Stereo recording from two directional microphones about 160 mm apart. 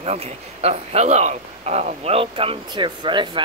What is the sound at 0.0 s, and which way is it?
Speech, 40° right (ahead or behind).